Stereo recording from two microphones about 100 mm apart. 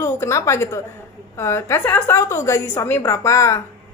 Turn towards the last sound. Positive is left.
turn(degrees=30)  # may be behind; listen again after turning